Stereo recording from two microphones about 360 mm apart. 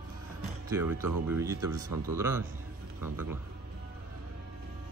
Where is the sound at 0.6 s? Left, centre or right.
Centre.